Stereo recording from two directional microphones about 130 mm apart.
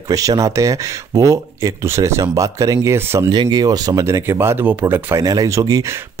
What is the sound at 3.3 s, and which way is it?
Speech, 35° right (ahead or behind).